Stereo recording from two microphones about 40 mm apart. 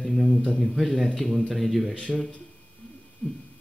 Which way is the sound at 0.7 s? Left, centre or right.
Centre.